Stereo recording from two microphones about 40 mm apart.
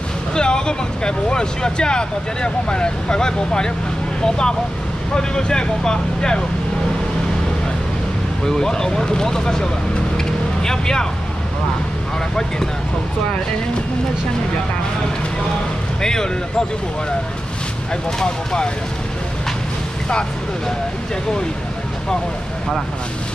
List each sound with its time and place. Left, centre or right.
0.3 s speech: centre
8.5 s speech: centre
10.1 s vehicle: centre
16.0 s speech: centre
18.2 s speech: centre